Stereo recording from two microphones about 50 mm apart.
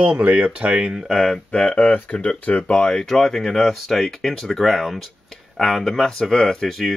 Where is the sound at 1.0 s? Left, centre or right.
Centre.